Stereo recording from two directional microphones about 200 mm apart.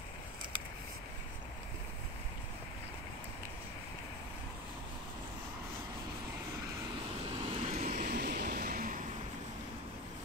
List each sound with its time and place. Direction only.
7.3 s vehicle: 30° right (ahead or behind); by 9.0 s 45° right (ahead or behind)